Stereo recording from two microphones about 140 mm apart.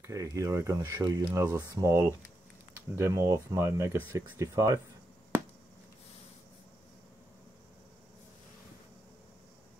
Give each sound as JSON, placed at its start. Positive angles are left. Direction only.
{"t": 0.0, "sound": "speech", "side_deg": -20}